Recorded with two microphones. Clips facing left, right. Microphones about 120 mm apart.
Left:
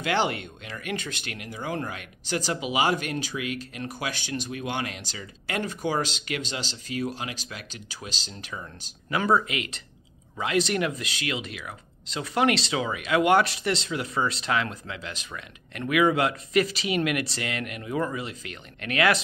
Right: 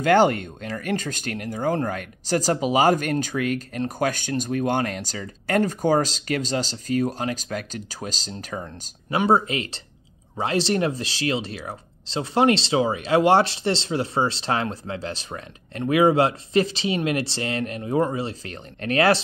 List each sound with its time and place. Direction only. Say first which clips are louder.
0.0 s speech: right 8 dB; 45° right (ahead or behind)
9.1 s speech: right 4 dB; 25° right (ahead or behind)